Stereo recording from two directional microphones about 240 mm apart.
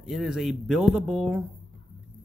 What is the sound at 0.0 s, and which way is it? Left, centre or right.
Speech, centre.